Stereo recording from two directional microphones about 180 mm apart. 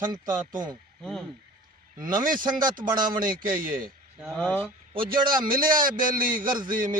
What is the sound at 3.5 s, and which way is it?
Speech, 50° right (ahead or behind).